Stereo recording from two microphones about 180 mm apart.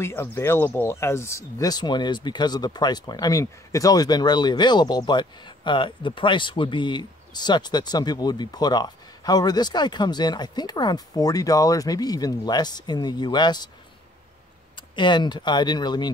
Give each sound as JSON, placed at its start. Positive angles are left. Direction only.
{"t": 0.0, "sound": "speech", "side_deg": 15}
{"t": 14.8, "sound": "speech", "side_deg": 25}